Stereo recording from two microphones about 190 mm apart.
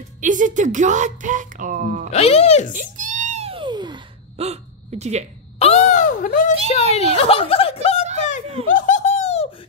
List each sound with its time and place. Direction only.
0.2 s speech: 40° right (ahead or behind)
2.0 s speech: 35° left (ahead or behind)
2.7 s a sound: 45° right (ahead or behind)
5.6 s a sound: 35° left (ahead or behind)
6.7 s a woman's voice: 35° left (ahead or behind)
8.7 s giggle: 40° left (ahead or behind)